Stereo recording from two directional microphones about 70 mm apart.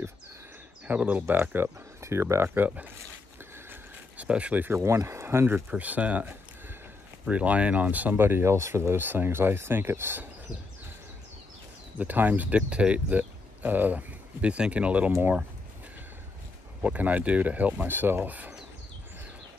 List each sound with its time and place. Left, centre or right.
0.8 s speech: right
2.0 s speech: right
4.2 s speech: centre
4.6 s speech: right
5.7 s speech: right
12.0 s speech: right
16.8 s speech: right
17.8 s speech: right